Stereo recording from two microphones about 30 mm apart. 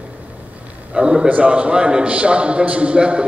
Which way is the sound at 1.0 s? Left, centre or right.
Right.